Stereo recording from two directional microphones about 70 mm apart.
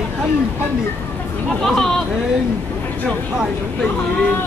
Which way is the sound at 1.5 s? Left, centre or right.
Centre.